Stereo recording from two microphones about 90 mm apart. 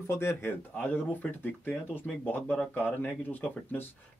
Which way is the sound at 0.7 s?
15° left (ahead or behind).